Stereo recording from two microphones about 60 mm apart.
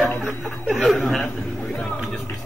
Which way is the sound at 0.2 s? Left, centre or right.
Centre.